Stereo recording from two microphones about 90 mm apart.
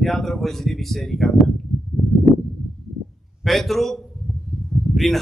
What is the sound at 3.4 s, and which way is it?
Speech, centre (ahead or behind).